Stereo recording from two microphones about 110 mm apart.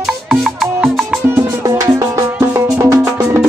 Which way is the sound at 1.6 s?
30° right (ahead or behind).